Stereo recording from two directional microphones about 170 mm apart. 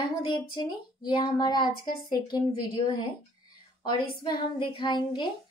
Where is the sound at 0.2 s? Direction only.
30° left (ahead or behind).